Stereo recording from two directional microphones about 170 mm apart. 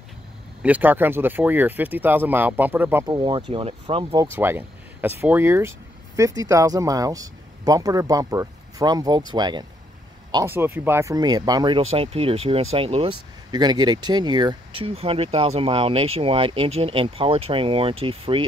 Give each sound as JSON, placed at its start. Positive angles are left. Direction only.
{"t": 0.6, "sound": "speech", "side_deg": -10}
{"t": 3.2, "sound": "speech", "side_deg": -30}
{"t": 4.1, "sound": "speech", "side_deg": -15}
{"t": 10.3, "sound": "speech", "side_deg": -15}